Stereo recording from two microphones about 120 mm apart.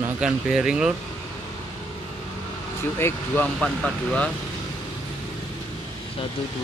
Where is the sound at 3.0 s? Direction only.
15° left (ahead or behind).